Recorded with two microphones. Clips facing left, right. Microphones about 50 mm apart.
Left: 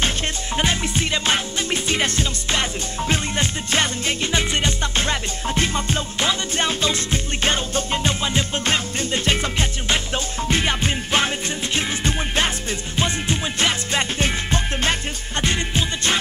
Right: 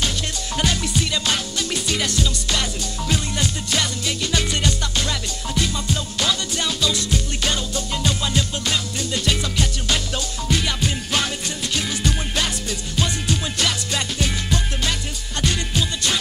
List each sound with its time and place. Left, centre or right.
0.6 s music: left